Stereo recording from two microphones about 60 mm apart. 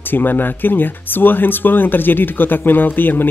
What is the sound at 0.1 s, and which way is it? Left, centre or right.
Speech, left.